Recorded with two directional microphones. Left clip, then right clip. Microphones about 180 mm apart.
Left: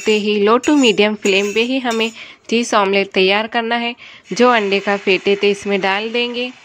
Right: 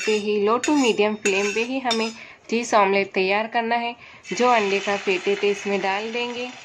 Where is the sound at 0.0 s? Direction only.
45° left (ahead or behind).